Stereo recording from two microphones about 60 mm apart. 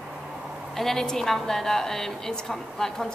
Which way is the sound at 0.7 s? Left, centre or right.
Centre.